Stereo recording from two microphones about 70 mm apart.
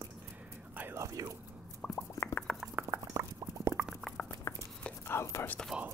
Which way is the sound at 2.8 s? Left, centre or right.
Right.